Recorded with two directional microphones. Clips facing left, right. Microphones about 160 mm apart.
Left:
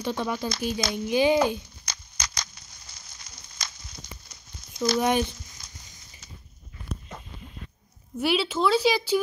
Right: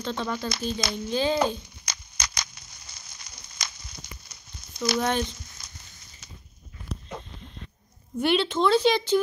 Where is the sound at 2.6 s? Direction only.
75° right (ahead or behind).